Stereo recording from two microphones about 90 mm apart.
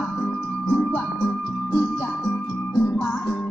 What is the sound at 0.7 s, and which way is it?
Music, 15° left (ahead or behind).